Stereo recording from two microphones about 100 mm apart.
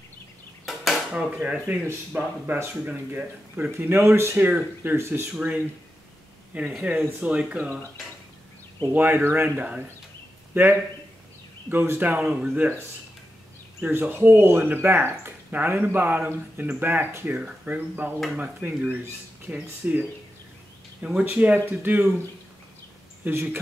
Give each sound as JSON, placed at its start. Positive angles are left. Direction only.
{"t": 0.7, "sound": "a sound", "side_deg": 0}
{"t": 1.1, "sound": "speech", "side_deg": -10}
{"t": 6.7, "sound": "speech", "side_deg": -10}
{"t": 8.9, "sound": "a man's voice", "side_deg": -20}
{"t": 13.7, "sound": "speech", "side_deg": -20}
{"t": 23.2, "sound": "speech", "side_deg": -20}